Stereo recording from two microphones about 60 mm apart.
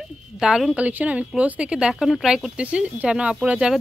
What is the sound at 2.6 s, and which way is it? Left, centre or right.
Speech, right.